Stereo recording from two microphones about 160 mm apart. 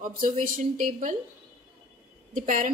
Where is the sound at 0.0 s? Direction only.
55° right (ahead or behind).